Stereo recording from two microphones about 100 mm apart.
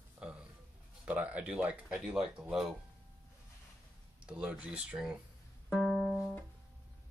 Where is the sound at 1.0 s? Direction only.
15° right (ahead or behind).